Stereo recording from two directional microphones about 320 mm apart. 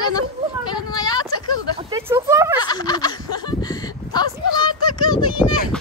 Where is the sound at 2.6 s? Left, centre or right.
Centre.